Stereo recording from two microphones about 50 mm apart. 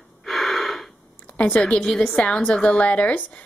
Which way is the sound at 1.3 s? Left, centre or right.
Left.